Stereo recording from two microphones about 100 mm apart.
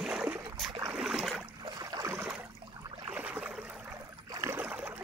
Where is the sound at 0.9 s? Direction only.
5° right (ahead or behind).